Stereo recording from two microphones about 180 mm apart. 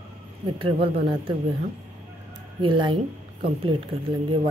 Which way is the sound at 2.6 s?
25° right (ahead or behind).